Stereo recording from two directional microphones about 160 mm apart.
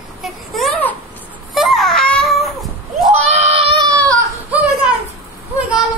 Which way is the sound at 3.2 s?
40° right (ahead or behind).